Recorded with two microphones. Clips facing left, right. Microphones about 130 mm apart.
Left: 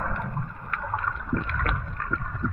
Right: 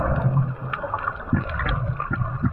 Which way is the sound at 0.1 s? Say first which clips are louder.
Right 8 dB; 15° right (ahead or behind).